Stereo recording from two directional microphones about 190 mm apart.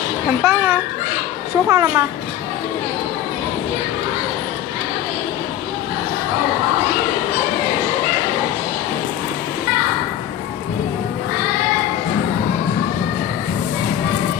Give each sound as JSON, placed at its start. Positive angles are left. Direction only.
{"t": 0.4, "sound": "a child's voice", "side_deg": -10}